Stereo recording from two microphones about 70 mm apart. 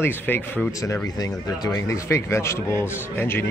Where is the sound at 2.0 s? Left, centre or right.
Left.